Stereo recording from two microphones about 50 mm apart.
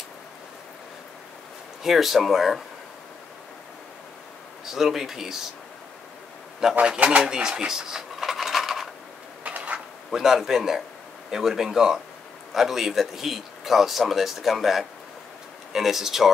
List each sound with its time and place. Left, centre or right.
1.8 s speech: centre
4.7 s speech: centre
6.6 s speech: centre
7.0 s a sound: right; by 8.8 s centre
9.4 s a sound: right
10.1 s speech: centre